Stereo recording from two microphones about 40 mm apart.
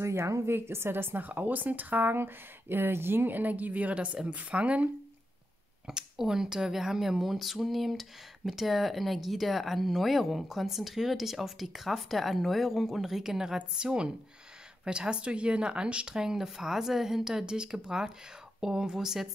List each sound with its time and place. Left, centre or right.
0.5 s a woman's voice: right
1.2 s a woman's voice: right
2.1 s speech: right
3.3 s a woman's voice: right
5.9 s speech: centre
16.2 s speech: centre